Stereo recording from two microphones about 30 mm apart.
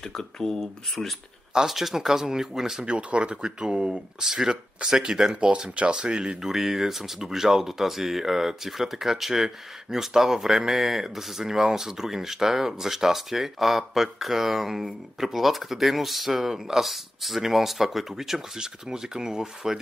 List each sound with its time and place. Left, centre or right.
0.1 s speech: centre
1.7 s speech: centre
2.8 s speech: right
4.2 s speech: centre
5.8 s speech: right
6.4 s speech: centre